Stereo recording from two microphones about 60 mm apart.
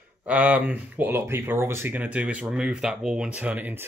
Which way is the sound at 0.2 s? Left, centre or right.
Right.